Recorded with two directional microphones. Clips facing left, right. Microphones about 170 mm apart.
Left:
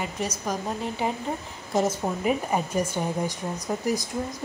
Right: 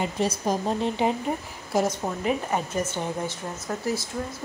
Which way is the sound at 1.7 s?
Centre (ahead or behind).